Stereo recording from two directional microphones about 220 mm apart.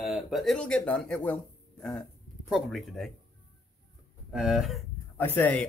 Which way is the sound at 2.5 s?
Centre (ahead or behind).